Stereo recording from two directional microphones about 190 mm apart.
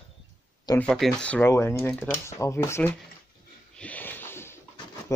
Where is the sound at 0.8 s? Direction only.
5° left (ahead or behind).